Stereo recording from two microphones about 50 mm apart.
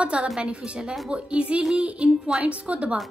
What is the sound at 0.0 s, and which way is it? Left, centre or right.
A woman's voice, right.